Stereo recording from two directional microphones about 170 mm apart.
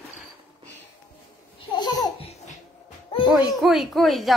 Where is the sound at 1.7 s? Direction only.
25° left (ahead or behind).